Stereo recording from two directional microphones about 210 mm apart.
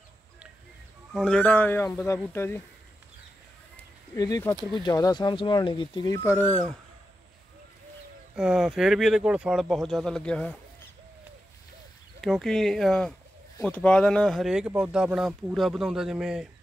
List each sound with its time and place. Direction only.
1.1 s speech: 5° left (ahead or behind)
4.1 s speech: 15° left (ahead or behind)
8.4 s speech: 5° right (ahead or behind)
12.2 s speech: centre (ahead or behind)